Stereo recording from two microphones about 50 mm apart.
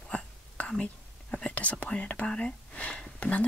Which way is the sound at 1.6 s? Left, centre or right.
Left.